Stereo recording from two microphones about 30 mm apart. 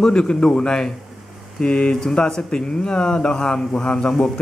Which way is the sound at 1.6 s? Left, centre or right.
Left.